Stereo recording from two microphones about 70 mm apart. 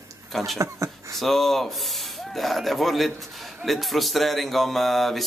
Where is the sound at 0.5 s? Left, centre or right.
Right.